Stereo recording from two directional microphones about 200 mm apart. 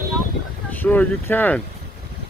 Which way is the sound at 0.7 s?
10° left (ahead or behind).